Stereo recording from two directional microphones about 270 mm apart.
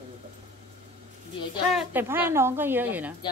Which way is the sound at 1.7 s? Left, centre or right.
Centre.